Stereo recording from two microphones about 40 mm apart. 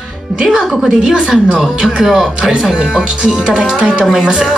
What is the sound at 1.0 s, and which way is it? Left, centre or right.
A woman's voice, right.